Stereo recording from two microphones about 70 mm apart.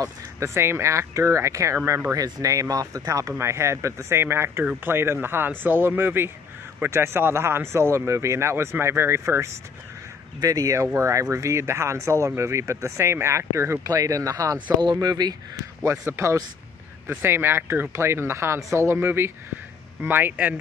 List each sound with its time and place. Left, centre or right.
0.0 s speech: right
3.3 s speech: right
10.4 s speech: right
13.8 s speech: right
14.8 s speech: right
15.8 s a man's voice: right
16.1 s speech: right